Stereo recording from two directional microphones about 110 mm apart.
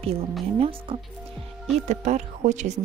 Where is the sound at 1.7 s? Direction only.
90° right.